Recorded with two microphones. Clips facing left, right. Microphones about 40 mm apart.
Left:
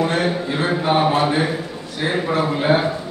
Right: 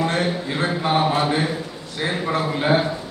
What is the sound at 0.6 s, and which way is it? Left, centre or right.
Speech, centre.